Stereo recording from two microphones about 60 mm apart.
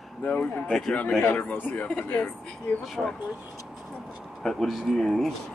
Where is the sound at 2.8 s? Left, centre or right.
Centre.